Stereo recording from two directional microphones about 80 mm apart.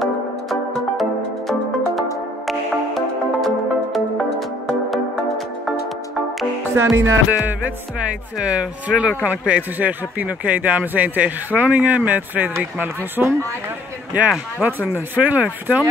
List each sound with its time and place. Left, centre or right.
0.0 s music: centre
2.4 s music: centre
6.7 s music: right
7.2 s speech: centre
14.6 s speech: right